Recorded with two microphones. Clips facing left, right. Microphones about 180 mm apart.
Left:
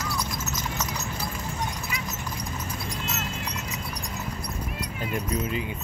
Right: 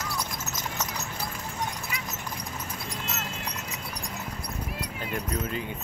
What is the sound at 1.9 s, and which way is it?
Clip-clop, 50° right (ahead or behind).